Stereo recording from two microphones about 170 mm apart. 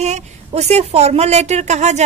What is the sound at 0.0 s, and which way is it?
A woman's voice, 40° right (ahead or behind).